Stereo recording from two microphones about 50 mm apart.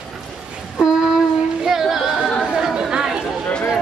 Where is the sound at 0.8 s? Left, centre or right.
Centre.